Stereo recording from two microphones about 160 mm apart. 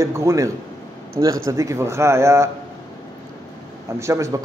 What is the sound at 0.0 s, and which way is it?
A man's voice, 20° right (ahead or behind).